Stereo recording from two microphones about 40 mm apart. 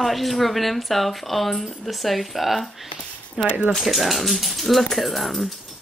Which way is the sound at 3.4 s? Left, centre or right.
Centre.